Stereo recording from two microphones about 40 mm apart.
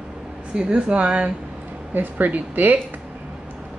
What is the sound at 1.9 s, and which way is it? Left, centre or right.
Speech, right.